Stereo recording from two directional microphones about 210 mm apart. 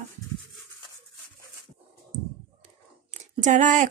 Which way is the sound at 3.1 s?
35° right (ahead or behind).